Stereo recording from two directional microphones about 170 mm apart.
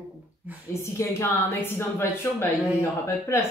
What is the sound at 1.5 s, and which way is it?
Speech, 15° left (ahead or behind).